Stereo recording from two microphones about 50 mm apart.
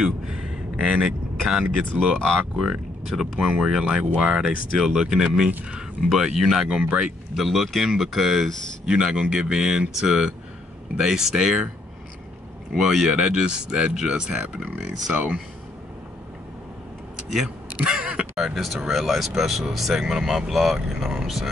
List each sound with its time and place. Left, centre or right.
0.0 s a sound: centre
2.0 s speech: centre
7.4 s speech: centre
12.7 s speech: centre
17.8 s speech: centre
18.3 s speech: centre